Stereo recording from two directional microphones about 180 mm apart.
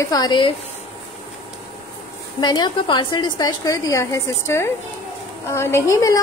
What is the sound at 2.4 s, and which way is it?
A woman's voice, 25° left (ahead or behind).